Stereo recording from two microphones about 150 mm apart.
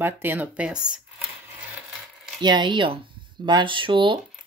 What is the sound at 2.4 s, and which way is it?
Speech, 30° right (ahead or behind).